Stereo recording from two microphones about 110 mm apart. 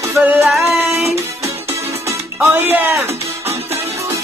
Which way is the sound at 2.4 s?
15° right (ahead or behind).